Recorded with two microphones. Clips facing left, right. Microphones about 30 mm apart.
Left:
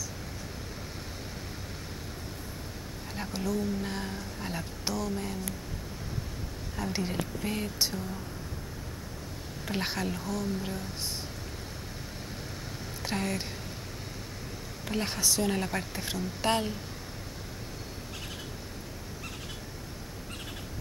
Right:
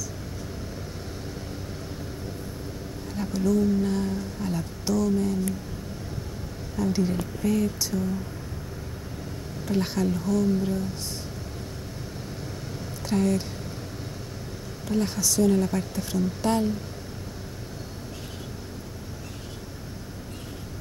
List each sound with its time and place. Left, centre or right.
3.2 s speech: centre
6.8 s a woman's voice: centre
9.7 s speech: left
13.0 s speech: centre
14.9 s a woman's voice: left